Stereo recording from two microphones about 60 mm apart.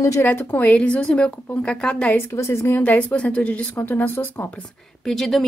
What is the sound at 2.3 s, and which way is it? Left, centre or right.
Speech, left.